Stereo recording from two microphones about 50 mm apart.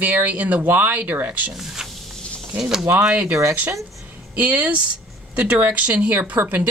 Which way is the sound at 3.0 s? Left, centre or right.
Right.